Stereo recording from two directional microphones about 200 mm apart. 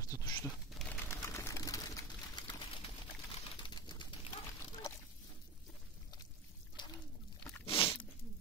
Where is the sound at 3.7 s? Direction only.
20° left (ahead or behind).